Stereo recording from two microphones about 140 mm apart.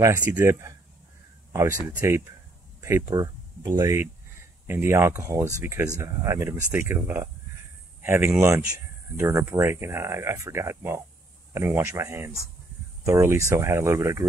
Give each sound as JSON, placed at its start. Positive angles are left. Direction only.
{"t": 0.3, "sound": "a man's voice", "side_deg": -15}